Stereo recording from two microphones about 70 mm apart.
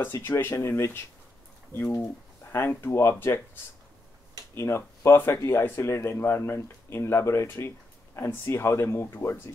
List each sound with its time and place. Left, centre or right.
0.0 s speech: left
2.5 s speech: left
4.6 s speech: left